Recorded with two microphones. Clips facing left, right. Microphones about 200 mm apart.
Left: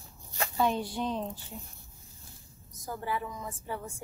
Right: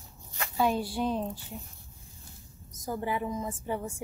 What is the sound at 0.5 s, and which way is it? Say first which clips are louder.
Speech: right 2 dB; 5° right (ahead or behind).